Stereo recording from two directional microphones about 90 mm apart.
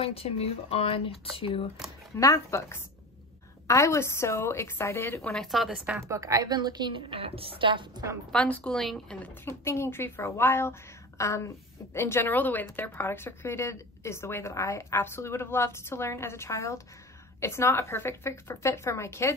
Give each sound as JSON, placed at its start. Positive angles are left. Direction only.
{"t": 0.0, "sound": "speech", "side_deg": 90}
{"t": 2.1, "sound": "a woman's voice", "side_deg": 35}
{"t": 5.2, "sound": "speech", "side_deg": 5}
{"t": 5.9, "sound": "a woman's voice", "side_deg": -35}
{"t": 8.3, "sound": "a woman's voice", "side_deg": 15}
{"t": 9.2, "sound": "a woman's voice", "side_deg": 25}